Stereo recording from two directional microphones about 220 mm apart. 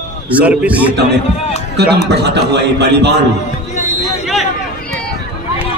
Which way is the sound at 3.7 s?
30° left (ahead or behind).